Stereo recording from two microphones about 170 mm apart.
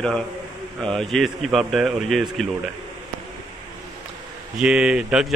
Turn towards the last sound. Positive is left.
turn(degrees=-5)  # may be behind; listen again after turning